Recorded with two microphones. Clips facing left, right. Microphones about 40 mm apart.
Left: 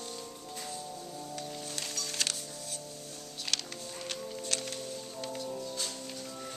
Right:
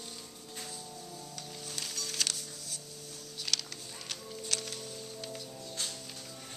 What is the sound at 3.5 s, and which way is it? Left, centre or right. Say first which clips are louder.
Music: left 1 dB; centre.